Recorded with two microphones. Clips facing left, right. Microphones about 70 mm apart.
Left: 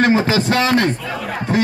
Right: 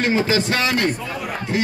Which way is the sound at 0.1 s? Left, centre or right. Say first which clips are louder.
Left 3 dB; left.